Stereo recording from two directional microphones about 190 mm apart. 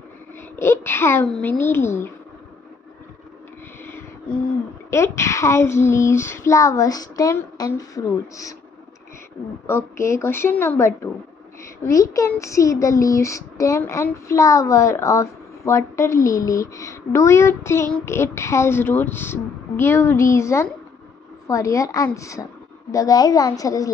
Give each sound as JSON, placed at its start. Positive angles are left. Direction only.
{"t": 0.6, "sound": "a woman's voice", "side_deg": 10}
{"t": 4.9, "sound": "a woman's voice", "side_deg": 15}
{"t": 9.7, "sound": "a woman's voice", "side_deg": 15}